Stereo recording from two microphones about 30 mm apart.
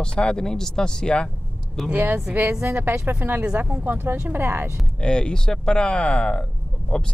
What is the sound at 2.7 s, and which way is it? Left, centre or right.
Speech, right.